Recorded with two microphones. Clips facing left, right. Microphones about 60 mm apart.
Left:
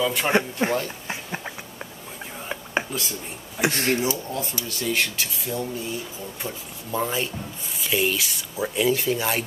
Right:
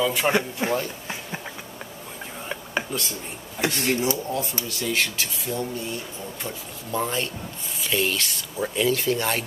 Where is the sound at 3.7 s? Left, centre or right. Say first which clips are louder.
Left 1 dB; left.